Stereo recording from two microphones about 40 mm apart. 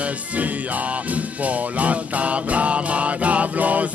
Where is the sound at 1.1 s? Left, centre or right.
Right.